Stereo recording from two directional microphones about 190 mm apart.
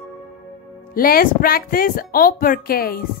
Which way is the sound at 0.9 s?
50° left (ahead or behind).